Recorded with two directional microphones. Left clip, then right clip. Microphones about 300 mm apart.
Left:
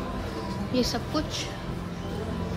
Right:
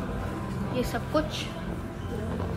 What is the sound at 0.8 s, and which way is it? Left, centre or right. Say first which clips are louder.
Speech: even; centre.